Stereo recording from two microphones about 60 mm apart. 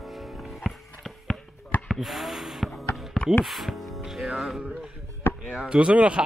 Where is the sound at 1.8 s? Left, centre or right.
Centre.